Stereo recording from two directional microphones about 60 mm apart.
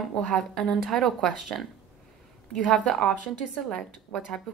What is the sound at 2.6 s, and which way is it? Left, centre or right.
Speech, centre.